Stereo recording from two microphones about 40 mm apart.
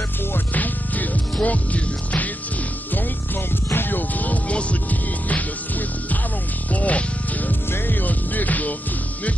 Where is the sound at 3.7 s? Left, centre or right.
Left.